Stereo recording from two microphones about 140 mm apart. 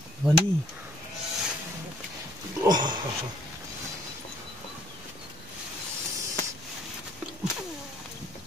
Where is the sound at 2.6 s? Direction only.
30° right (ahead or behind).